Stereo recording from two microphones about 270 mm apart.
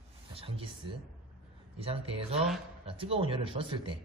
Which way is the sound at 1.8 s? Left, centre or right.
Right.